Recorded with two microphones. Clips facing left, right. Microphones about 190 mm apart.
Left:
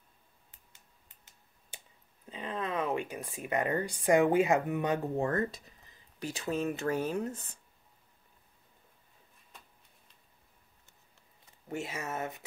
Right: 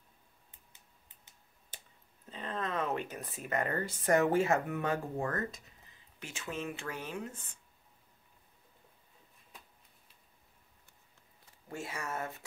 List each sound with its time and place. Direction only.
1.7 s clicking: 10° left (ahead or behind)
2.2 s speech: 10° left (ahead or behind); by 7.5 s 40° left (ahead or behind)
11.7 s speech: 20° left (ahead or behind)